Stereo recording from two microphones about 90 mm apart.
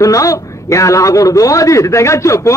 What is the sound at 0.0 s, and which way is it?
A man's voice, 40° left (ahead or behind).